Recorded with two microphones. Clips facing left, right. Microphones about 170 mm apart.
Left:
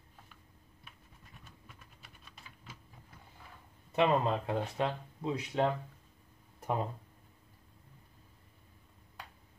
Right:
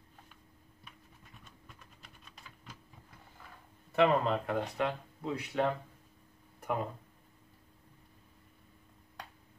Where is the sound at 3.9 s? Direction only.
20° left (ahead or behind).